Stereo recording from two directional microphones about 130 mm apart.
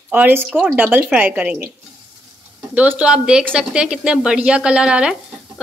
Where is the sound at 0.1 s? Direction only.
15° right (ahead or behind).